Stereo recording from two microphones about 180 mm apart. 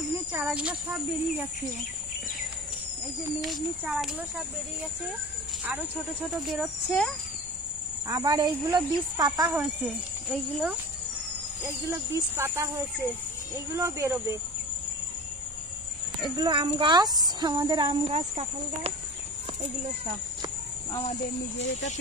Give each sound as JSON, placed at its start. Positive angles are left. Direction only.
{"t": 0.4, "sound": "speech", "side_deg": -5}
{"t": 3.3, "sound": "speech", "side_deg": 0}
{"t": 6.4, "sound": "speech", "side_deg": 0}
{"t": 8.1, "sound": "speech", "side_deg": -20}
{"t": 11.8, "sound": "speech", "side_deg": -15}
{"t": 16.3, "sound": "speech", "side_deg": -25}
{"t": 21.0, "sound": "speech", "side_deg": 40}